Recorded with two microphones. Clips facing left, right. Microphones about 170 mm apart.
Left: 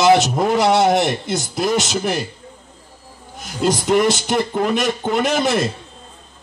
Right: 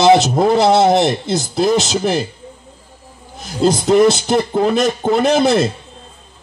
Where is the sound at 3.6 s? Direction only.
35° right (ahead or behind).